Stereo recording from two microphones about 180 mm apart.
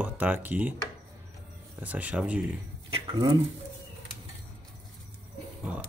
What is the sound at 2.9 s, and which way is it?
Speech, 25° right (ahead or behind).